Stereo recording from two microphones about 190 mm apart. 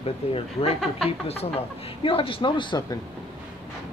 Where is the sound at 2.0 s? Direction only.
25° left (ahead or behind).